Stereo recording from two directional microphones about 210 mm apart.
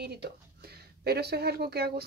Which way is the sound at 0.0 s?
50° right (ahead or behind).